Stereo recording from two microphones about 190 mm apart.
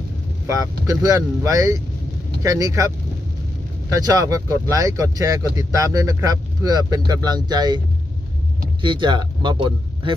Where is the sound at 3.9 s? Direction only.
20° right (ahead or behind).